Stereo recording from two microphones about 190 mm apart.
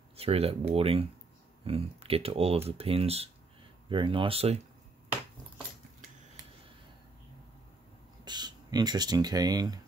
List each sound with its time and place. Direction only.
0.1 s speech: 30° right (ahead or behind)
8.3 s speech: 20° right (ahead or behind)